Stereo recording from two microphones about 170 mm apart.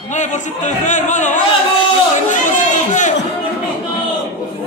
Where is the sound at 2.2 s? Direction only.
45° left (ahead or behind).